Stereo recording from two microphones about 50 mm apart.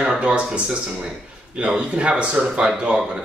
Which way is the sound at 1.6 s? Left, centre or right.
Right.